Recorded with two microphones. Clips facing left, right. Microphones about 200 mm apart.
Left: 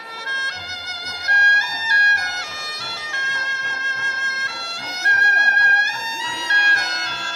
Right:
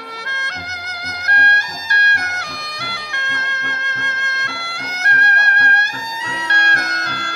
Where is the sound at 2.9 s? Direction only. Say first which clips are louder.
Right 3 dB; 60° right (ahead or behind).